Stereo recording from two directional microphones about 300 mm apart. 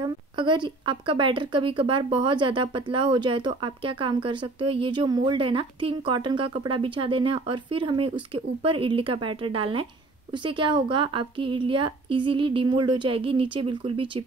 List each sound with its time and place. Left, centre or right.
0.0 s speech: centre